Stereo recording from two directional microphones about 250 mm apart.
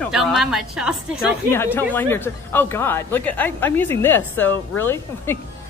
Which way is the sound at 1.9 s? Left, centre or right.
Centre.